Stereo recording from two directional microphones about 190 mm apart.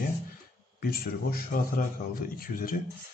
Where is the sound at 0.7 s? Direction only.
50° left (ahead or behind).